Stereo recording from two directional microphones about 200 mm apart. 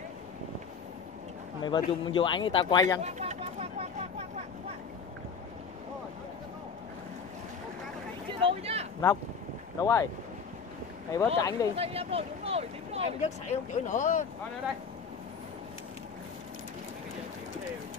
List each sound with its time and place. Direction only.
1.6 s speech: 25° left (ahead or behind)
3.0 s speech: 35° right (ahead or behind)
8.3 s speech: 25° right (ahead or behind)
9.8 s speech: 15° left (ahead or behind)
11.1 s speech: 15° left (ahead or behind)
11.7 s speech: 30° right (ahead or behind)
13.2 s speech: 35° left (ahead or behind)